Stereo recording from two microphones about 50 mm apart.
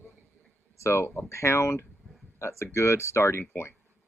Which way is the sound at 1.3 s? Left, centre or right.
Left.